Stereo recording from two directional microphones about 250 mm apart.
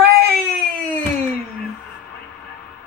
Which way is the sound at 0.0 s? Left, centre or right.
Right.